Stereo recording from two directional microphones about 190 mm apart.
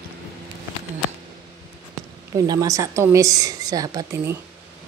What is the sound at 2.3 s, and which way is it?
A woman's voice, 20° right (ahead or behind).